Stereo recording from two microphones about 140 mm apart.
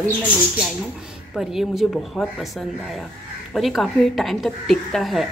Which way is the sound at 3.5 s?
Centre (ahead or behind).